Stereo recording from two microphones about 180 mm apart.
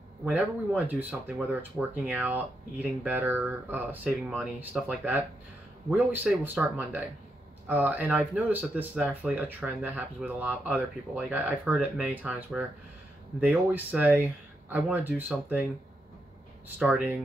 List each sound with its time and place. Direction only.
0.2 s speech: 10° right (ahead or behind)
16.6 s speech: 5° right (ahead or behind)